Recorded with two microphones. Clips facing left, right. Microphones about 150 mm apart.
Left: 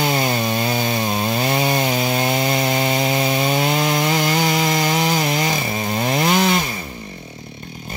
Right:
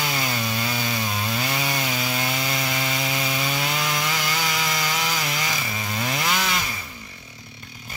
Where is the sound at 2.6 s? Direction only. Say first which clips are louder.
Left 8 dB; 25° left (ahead or behind).